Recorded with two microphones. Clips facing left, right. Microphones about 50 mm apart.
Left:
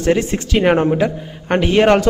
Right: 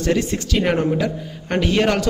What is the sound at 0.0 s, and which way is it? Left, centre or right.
A man's voice, left.